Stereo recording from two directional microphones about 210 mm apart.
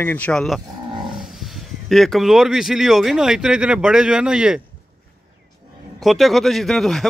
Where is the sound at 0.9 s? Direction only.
20° right (ahead or behind).